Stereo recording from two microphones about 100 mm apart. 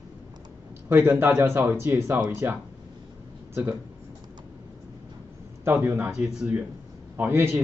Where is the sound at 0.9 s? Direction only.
20° right (ahead or behind).